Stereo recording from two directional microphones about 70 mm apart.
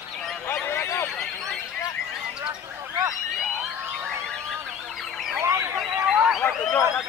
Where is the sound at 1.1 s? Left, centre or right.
Centre.